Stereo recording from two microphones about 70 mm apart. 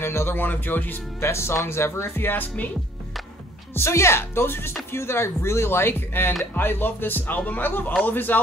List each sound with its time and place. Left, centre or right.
0.0 s speech: left
1.2 s speech: left
3.7 s speech: left